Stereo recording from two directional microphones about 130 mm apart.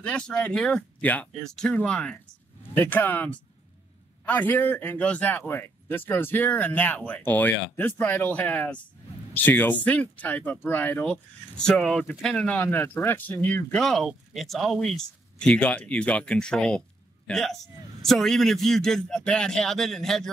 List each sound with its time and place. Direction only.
0.0 s a man's voice: 10° left (ahead or behind)